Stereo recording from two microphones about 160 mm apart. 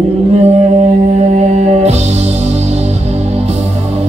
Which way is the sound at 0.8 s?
45° right (ahead or behind).